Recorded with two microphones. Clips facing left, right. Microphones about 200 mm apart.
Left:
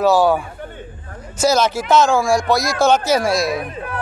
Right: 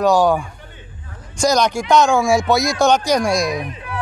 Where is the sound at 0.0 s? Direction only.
5° left (ahead or behind).